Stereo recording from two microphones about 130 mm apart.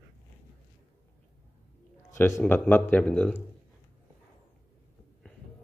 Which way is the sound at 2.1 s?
20° left (ahead or behind).